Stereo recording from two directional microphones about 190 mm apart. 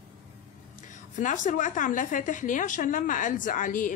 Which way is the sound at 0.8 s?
40° left (ahead or behind).